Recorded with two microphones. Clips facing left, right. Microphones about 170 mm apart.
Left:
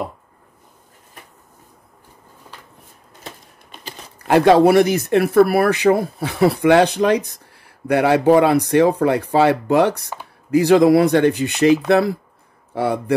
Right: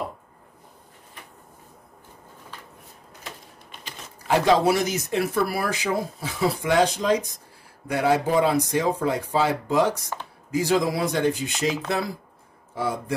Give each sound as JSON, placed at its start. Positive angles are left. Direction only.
{"t": 4.2, "sound": "a man's voice", "side_deg": 60}